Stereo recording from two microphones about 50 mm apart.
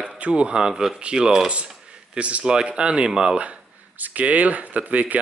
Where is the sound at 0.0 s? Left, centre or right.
Right.